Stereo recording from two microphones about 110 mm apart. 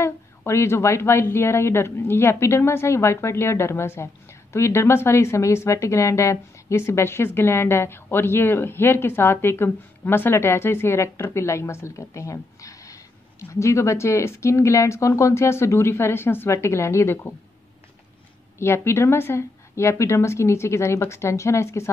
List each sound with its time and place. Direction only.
0.0 s a woman's voice: 25° left (ahead or behind)
18.6 s a woman's voice: 25° left (ahead or behind)